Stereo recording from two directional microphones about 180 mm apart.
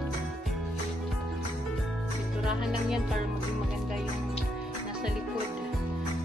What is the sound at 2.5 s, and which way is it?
Speech, 5° right (ahead or behind).